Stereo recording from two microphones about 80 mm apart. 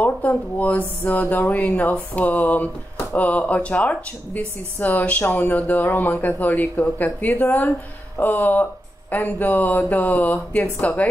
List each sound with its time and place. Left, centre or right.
0.0 s speech: left